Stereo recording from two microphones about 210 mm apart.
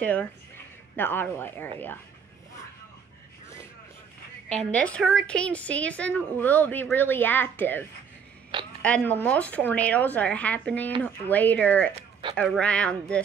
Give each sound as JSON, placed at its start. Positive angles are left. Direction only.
{"t": 0.0, "sound": "a woman's voice", "side_deg": 10}
{"t": 4.5, "sound": "a woman's voice", "side_deg": 5}
{"t": 8.8, "sound": "a woman's voice", "side_deg": 5}
{"t": 11.9, "sound": "a sound", "side_deg": -25}
{"t": 12.4, "sound": "speech", "side_deg": 5}